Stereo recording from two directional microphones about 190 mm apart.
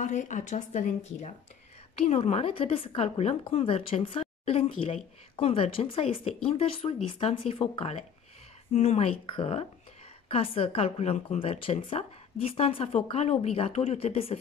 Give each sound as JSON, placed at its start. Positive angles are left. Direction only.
{"t": 0.0, "sound": "a woman's voice", "side_deg": 40}